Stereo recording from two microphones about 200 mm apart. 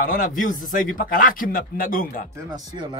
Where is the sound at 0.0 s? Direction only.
40° left (ahead or behind).